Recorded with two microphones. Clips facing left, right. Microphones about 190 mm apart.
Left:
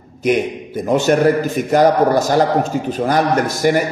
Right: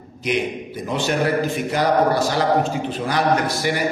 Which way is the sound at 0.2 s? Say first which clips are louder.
Left 6 dB; 45° left (ahead or behind).